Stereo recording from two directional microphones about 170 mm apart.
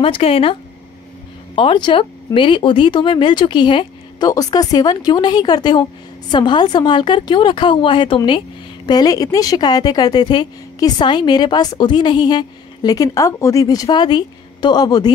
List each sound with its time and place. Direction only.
0.0 s speech: 35° left (ahead or behind)